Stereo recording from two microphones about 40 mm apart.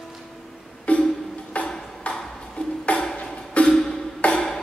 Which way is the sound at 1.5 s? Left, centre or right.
Left.